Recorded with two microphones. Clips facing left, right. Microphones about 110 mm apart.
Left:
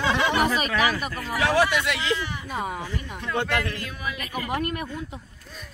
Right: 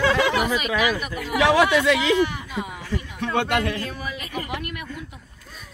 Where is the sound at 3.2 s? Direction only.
65° right (ahead or behind).